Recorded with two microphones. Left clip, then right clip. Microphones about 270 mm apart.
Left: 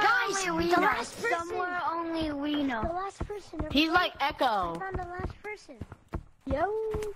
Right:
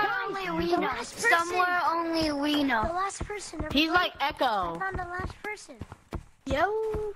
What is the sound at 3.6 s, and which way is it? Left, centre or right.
A woman's voice, centre.